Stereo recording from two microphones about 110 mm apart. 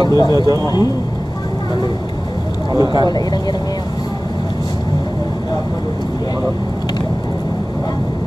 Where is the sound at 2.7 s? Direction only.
40° right (ahead or behind).